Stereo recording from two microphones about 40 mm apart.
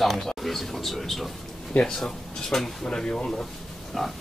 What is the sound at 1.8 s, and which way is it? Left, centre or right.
Speech, centre.